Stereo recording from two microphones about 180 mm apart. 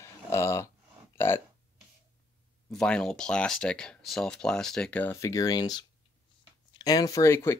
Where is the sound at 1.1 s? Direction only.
15° left (ahead or behind).